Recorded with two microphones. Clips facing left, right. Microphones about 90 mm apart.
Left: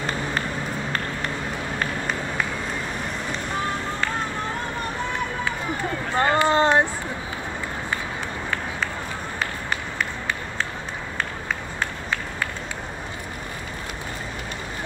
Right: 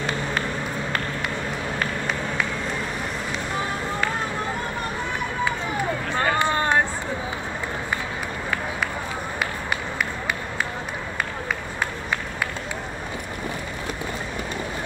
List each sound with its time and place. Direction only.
1.8 s run: 5° left (ahead or behind)
6.1 s run: 20° left (ahead or behind)